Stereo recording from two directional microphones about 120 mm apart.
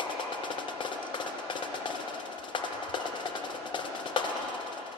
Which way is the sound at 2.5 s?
45° left (ahead or behind).